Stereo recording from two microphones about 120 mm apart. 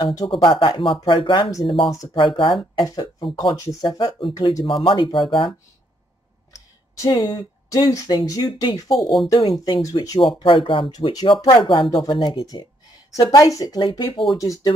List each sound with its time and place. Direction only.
0.0 s speech: 30° left (ahead or behind)
0.3 s speech: 45° left (ahead or behind)
6.5 s speech: 25° left (ahead or behind)
9.0 s speech: centre (ahead or behind)
9.3 s speech: 35° left (ahead or behind)
10.4 s speech: 45° left (ahead or behind)
13.1 s speech: 30° left (ahead or behind)